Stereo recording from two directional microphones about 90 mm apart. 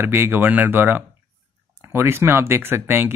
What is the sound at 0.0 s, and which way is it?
Speech, 25° right (ahead or behind).